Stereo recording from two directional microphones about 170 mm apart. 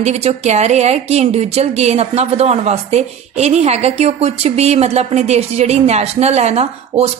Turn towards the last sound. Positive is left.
turn(degrees=-40)  # may be behind; listen again after turning